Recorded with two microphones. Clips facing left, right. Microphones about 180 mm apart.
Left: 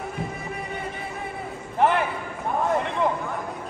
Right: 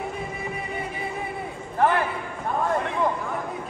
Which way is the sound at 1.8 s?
20° left (ahead or behind).